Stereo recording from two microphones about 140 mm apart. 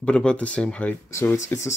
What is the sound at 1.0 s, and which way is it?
Speech, 20° left (ahead or behind).